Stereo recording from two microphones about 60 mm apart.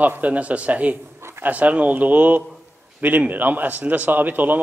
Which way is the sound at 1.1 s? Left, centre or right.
Right.